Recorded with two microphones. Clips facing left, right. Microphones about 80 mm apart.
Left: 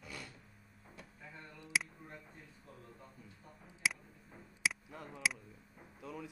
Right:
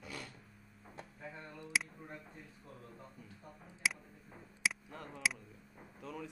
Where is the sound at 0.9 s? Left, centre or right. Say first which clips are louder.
Right 5 dB; right.